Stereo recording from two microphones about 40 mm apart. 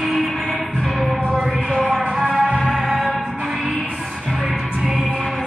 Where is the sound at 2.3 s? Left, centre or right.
Centre.